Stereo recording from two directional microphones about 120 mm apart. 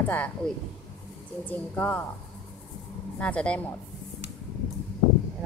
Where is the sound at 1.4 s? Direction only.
10° left (ahead or behind).